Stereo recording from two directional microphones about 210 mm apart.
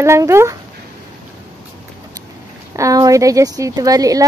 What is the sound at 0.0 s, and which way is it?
Speech, 15° right (ahead or behind).